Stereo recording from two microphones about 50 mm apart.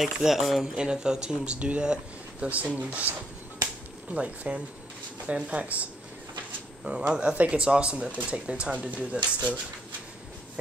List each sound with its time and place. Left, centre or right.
0.0 s speech: centre
0.7 s speech: centre